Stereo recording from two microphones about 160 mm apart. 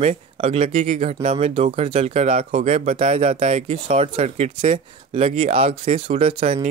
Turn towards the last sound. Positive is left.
turn(degrees=-40)  # may be behind; listen again after turning